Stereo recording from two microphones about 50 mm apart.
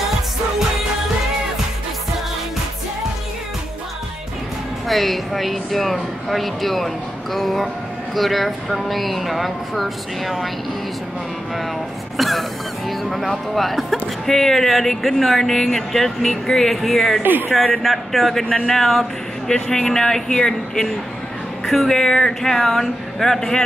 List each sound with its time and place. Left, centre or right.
4.8 s speech: centre
12.2 s speech: centre
17.2 s speech: right
17.8 s speech: centre